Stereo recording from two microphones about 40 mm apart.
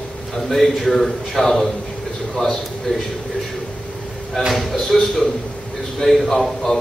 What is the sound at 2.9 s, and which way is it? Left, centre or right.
Speech, left.